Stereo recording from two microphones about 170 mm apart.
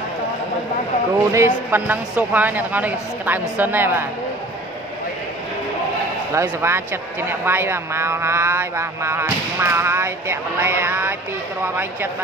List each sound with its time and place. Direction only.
1.3 s speech: 15° right (ahead or behind)
6.3 s speech: 15° right (ahead or behind)